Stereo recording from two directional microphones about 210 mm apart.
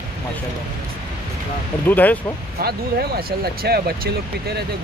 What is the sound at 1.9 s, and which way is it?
Speech, 10° left (ahead or behind).